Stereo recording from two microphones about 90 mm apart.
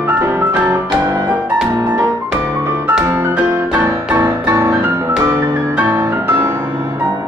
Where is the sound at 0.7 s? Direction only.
35° right (ahead or behind).